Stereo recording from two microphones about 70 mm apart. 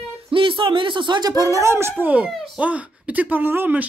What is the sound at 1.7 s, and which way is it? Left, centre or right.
Speech, right.